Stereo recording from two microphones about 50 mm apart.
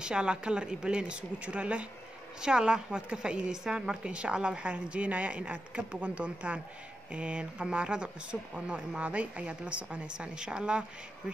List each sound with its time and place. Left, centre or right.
0.0 s a woman's voice: centre